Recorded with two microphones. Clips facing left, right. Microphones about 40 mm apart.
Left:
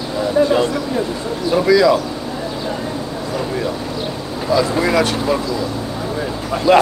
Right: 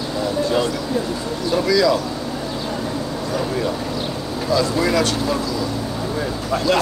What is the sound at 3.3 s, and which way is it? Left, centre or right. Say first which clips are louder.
Speech: left 1 dB; centre.